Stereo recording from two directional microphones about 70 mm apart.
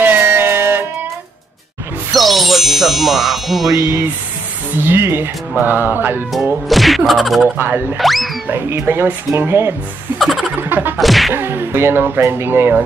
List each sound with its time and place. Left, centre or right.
0.0 s music: right
2.1 s music: centre
3.7 s speech: right
4.7 s speech: right
5.6 s a sound: right
6.7 s speech: centre
7.4 s a sound: right
8.0 s music: centre
8.5 s speech: right
10.1 s a sound: centre
10.6 s a sound: right
11.0 s speech: centre
11.3 s speech: right